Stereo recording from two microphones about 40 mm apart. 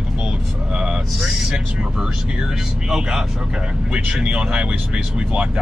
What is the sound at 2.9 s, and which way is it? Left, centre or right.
Speech, centre.